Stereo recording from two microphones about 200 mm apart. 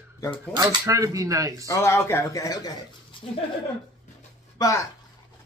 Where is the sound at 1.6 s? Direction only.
15° left (ahead or behind).